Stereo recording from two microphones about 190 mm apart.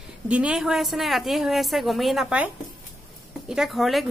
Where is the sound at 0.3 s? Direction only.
5° right (ahead or behind).